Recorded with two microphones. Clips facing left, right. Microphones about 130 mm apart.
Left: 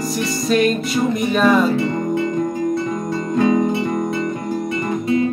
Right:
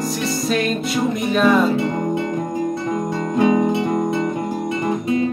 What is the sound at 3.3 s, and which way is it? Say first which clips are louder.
Music: even; 20° right (ahead or behind).